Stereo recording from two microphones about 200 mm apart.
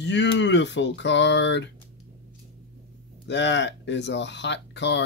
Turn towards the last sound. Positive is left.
turn(degrees=60)  # may be behind; listen again after turning